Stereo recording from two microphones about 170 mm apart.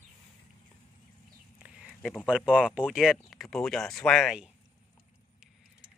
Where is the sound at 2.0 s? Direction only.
5° left (ahead or behind).